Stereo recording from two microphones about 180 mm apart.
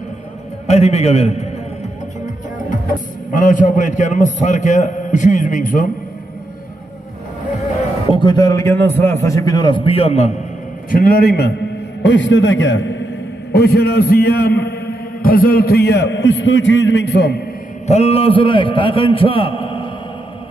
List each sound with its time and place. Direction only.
0.7 s a man's voice: 35° left (ahead or behind)
3.3 s a man's voice: 45° left (ahead or behind)
8.1 s a man's voice: 25° left (ahead or behind)
10.9 s a man's voice: 55° left (ahead or behind)
12.0 s a man's voice: 90° left
13.5 s a man's voice: 60° left (ahead or behind)
17.8 s a man's voice: 35° left (ahead or behind)